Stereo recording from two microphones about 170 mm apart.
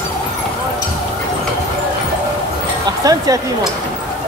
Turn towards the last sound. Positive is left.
turn(degrees=-20)  # may be behind; listen again after turning